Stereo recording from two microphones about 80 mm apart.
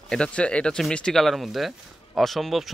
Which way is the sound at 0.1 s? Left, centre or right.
Centre.